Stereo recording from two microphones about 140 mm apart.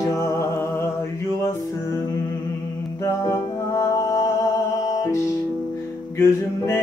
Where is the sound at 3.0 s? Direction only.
20° left (ahead or behind).